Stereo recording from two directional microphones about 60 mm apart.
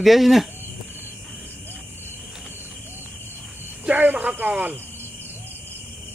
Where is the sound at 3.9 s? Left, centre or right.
Right.